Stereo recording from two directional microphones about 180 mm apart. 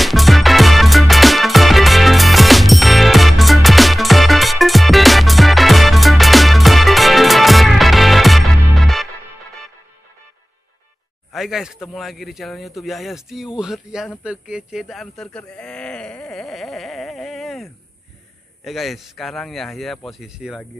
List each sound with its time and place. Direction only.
0.0 s music: centre (ahead or behind)
11.3 s speech: centre (ahead or behind)